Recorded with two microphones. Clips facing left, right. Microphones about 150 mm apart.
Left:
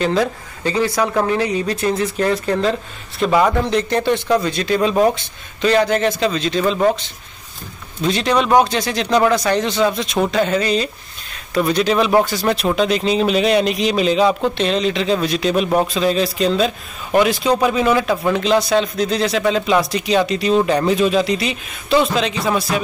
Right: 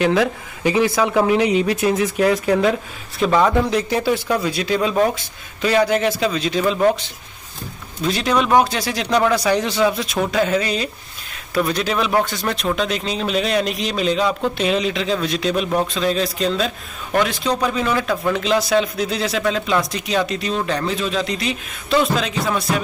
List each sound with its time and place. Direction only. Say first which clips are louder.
0.0 s a man's voice: right 1 dB; 5° right (ahead or behind)
1.8 s a man's voice: right 1 dB; 5° right (ahead or behind)
3.3 s a man's voice: left 1 dB; 5° left (ahead or behind)
8.0 s a man's voice: left 2 dB; 5° right (ahead or behind)
14.6 s a man's voice: left 2 dB; 5° right (ahead or behind)